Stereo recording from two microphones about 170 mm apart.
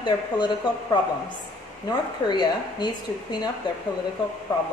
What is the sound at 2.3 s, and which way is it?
Speech, 25° left (ahead or behind).